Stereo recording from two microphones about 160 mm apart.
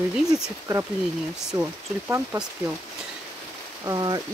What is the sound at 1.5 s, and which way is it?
Speech, 15° right (ahead or behind).